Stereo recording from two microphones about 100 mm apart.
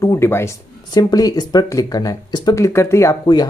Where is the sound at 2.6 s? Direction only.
30° left (ahead or behind).